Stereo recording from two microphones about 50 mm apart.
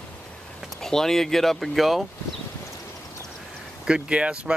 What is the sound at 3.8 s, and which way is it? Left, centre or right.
Speech, centre.